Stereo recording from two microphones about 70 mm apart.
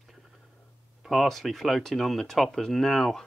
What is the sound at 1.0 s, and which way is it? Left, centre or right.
Speech, centre.